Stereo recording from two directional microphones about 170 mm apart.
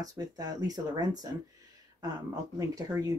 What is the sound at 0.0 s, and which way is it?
Speech, 20° right (ahead or behind).